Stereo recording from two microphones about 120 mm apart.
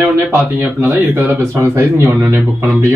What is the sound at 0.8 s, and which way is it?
Speech, 15° right (ahead or behind).